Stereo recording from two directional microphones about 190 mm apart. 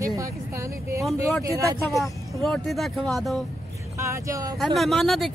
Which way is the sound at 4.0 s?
15° right (ahead or behind).